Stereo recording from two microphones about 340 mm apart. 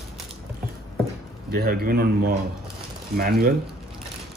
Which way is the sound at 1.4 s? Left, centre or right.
Right.